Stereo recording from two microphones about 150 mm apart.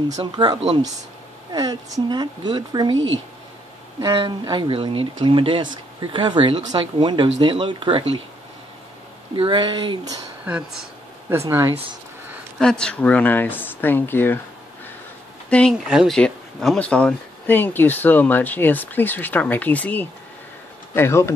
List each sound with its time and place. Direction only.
0.4 s speech: 30° right (ahead or behind)
4.1 s speech: 35° right (ahead or behind)
9.3 s speech: 35° right (ahead or behind)
10.4 s speech: 10° right (ahead or behind)
12.5 s speech: 5° left (ahead or behind)
15.5 s speech: 5° left (ahead or behind)